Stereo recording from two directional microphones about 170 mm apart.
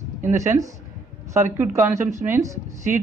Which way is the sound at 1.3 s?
15° right (ahead or behind).